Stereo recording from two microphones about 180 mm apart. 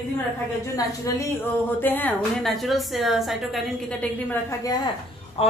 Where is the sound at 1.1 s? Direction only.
15° left (ahead or behind); by 3.9 s centre (ahead or behind).